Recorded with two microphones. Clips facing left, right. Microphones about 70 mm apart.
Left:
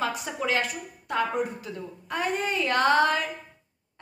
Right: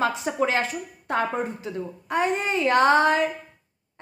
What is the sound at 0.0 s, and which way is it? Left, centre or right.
Speech, right.